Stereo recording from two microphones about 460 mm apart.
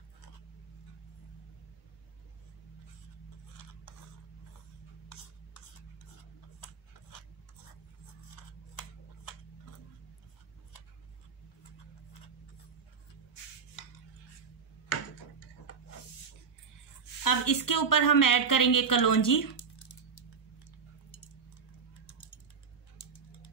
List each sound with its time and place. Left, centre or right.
5.1 s rub: left
6.6 s a sound: left
17.2 s a woman's voice: left